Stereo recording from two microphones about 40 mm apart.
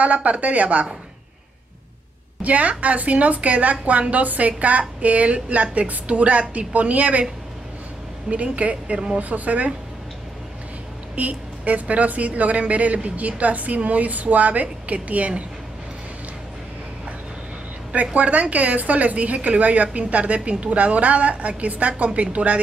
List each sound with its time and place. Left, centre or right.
0.0 s speech: right
2.4 s a woman's voice: right
8.3 s speech: right
9.2 s speech: right
11.1 s speech: right
18.1 s speech: right